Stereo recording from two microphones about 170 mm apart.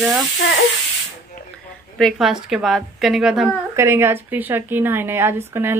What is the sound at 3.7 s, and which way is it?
Speech, 15° right (ahead or behind).